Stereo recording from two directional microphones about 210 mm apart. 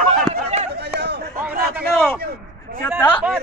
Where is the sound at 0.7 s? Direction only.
50° right (ahead or behind).